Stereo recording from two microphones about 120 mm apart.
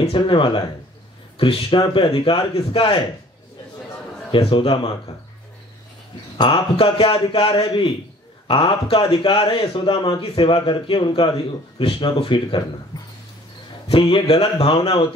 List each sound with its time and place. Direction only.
0.1 s speech: 45° left (ahead or behind)
4.3 s speech: 45° left (ahead or behind)
6.3 s speech: 45° left (ahead or behind)
13.8 s speech: 45° left (ahead or behind)